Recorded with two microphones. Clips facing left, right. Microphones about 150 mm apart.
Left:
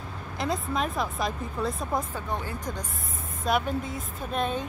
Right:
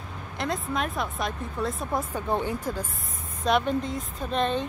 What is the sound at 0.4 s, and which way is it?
Speech, centre (ahead or behind).